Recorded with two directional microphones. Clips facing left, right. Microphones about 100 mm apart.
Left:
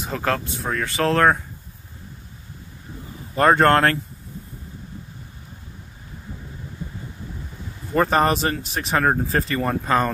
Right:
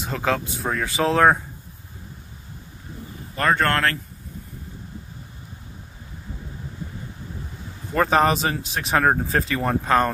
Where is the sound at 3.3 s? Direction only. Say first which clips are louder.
Left 5 dB; 35° left (ahead or behind).